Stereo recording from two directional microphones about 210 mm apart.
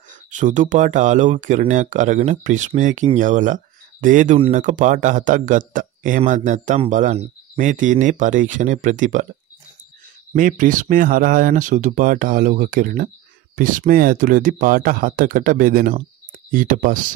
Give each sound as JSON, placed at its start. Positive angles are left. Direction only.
{"t": 0.3, "sound": "speech", "side_deg": -35}
{"t": 10.3, "sound": "speech", "side_deg": -40}